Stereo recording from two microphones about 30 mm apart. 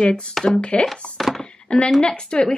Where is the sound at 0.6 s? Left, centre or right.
Left.